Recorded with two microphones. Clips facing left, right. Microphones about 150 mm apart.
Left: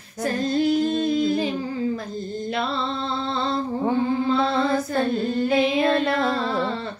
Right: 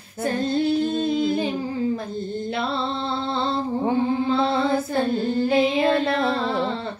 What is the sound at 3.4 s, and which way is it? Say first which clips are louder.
Female singing: even; 30° right (ahead or behind).